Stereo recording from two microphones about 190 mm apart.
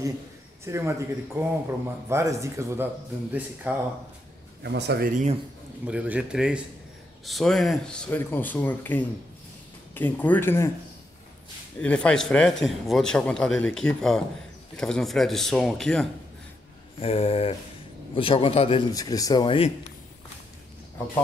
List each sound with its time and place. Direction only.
0.7 s speech: 15° right (ahead or behind)
4.6 s speech: 60° right (ahead or behind); by 5.4 s 40° right (ahead or behind)
5.9 s a man's voice: 5° right (ahead or behind); by 10.7 s 10° left (ahead or behind)
11.8 s a man's voice: 5° left (ahead or behind)
17.0 s speech: 30° left (ahead or behind)